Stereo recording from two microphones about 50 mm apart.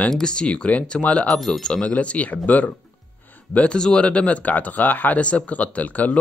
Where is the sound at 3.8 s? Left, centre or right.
Centre; by 5.1 s left.